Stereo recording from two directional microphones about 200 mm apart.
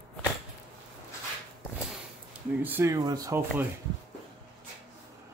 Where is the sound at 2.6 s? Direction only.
10° right (ahead or behind).